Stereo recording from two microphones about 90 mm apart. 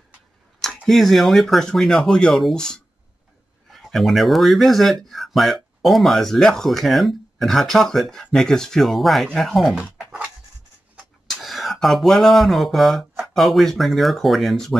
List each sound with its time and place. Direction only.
0.8 s speech: centre (ahead or behind)
11.2 s a sound: centre (ahead or behind)
13.2 s speech: centre (ahead or behind)